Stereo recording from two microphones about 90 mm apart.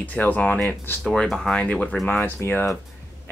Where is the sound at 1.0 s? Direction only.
10° left (ahead or behind); by 2.8 s 25° left (ahead or behind).